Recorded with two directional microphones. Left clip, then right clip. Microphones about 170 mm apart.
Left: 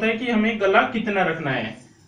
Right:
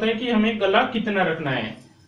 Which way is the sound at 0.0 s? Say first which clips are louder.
Even; 20° right (ahead or behind).